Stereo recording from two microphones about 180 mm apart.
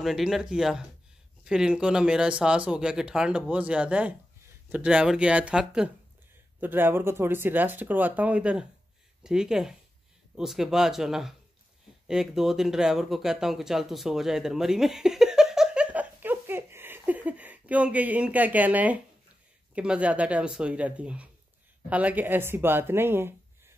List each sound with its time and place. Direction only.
0.0 s speech: centre (ahead or behind)